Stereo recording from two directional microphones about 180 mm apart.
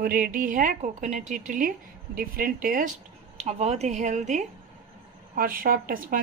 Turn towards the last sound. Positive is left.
turn(degrees=-50)  # may be behind; listen again after turning